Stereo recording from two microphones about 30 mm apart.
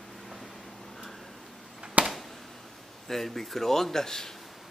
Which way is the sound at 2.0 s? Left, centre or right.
Right.